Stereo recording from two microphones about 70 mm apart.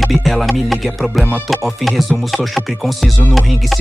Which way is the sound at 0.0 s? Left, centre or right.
Centre.